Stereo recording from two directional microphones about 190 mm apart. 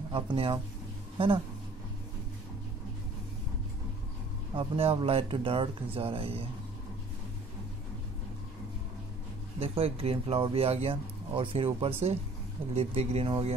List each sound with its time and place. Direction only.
0.1 s speech: 25° right (ahead or behind)
4.6 s speech: 30° right (ahead or behind)
9.6 s speech: 30° right (ahead or behind)